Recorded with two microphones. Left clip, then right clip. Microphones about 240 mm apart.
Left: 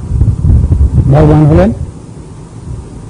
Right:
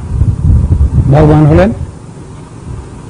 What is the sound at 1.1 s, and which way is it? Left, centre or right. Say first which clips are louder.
Speech: right 1 dB; left.